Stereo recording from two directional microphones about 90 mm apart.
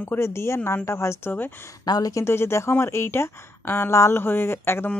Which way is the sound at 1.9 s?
40° left (ahead or behind).